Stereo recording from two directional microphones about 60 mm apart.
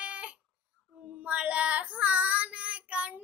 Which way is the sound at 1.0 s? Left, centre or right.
Centre.